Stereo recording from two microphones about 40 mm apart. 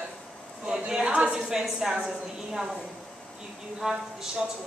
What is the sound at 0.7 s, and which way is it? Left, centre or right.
A woman's voice, centre.